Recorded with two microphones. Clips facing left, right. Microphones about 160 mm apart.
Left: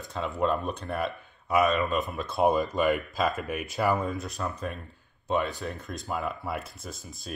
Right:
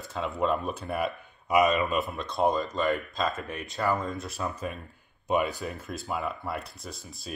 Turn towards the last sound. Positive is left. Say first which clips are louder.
# left 1 dB
turn(degrees=0)  # may be behind; listen again after turning